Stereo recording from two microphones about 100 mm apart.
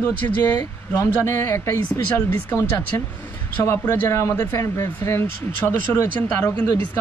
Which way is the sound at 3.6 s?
25° left (ahead or behind).